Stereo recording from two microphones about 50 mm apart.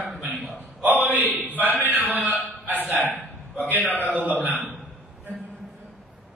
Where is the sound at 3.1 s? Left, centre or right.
Left.